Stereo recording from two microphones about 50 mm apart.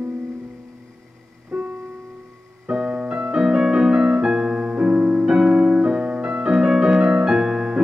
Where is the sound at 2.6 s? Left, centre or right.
Centre.